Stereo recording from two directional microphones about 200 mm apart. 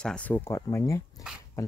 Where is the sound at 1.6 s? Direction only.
15° left (ahead or behind).